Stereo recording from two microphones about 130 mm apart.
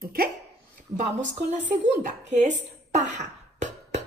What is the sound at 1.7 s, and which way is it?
A woman's voice, 65° right (ahead or behind).